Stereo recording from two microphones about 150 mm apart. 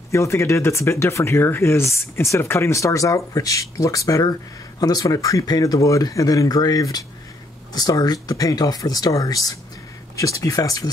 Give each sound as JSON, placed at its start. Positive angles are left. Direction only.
{"t": 0.1, "sound": "speech", "side_deg": 20}